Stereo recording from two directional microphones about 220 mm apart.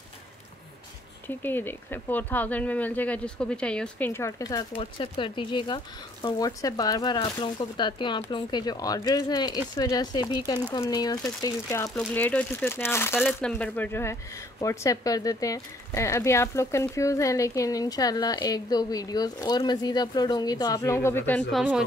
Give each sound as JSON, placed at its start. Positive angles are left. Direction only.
{"t": 1.2, "sound": "speech", "side_deg": 10}
{"t": 13.2, "sound": "speech", "side_deg": 0}